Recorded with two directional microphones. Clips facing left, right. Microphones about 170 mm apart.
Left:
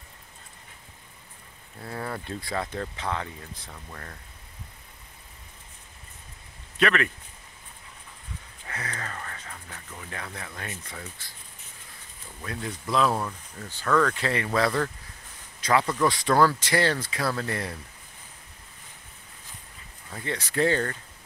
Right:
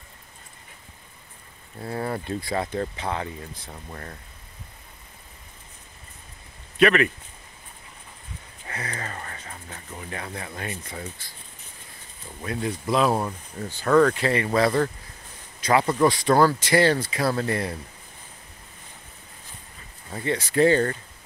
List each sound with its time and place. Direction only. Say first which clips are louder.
1.8 s speech: right 5 dB; 25° right (ahead or behind)
2.2 s speech: right 4 dB; 15° right (ahead or behind)
3.6 s speech: right 4 dB; 25° right (ahead or behind)
6.8 s speech: right 6 dB; 10° right (ahead or behind)
8.6 s speech: right 3 dB; 10° right (ahead or behind); by 10.0 s 25° right (ahead or behind)
10.0 s speech: right 4 dB; 15° right (ahead or behind)
12.4 s speech: right 6 dB; 15° right (ahead or behind)
13.1 s speech: right 4 dB; 25° right (ahead or behind)
14.1 s speech: right 4 dB; 5° right (ahead or behind)
15.8 s speech: right 4 dB; 25° right (ahead or behind)
16.1 s speech: even; 5° right (ahead or behind)
17.2 s speech: right 2 dB; 25° right (ahead or behind)
17.5 s speech: right 5 dB; 5° right (ahead or behind)
20.2 s speech: right 6 dB; 10° right (ahead or behind)